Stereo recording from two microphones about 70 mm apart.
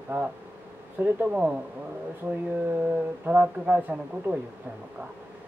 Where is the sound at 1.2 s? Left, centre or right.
Centre.